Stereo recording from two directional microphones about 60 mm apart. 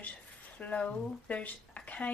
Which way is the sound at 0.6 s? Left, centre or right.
Left.